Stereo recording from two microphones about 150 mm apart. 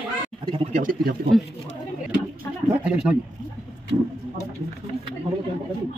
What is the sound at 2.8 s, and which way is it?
Speech, 10° right (ahead or behind).